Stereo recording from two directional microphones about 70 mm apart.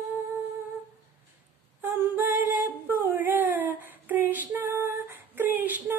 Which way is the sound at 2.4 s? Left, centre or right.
Right.